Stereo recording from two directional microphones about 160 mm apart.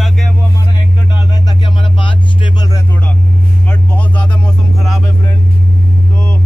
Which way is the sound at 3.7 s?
10° left (ahead or behind).